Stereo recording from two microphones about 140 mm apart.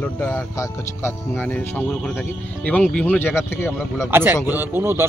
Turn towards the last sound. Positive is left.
turn(degrees=-15)  # may be behind; listen again after turning